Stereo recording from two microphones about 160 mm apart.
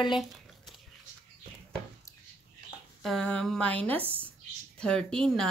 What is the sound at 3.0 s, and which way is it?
Speech, 5° left (ahead or behind).